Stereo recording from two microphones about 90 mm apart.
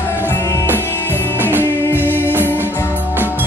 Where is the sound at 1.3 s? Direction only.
20° right (ahead or behind).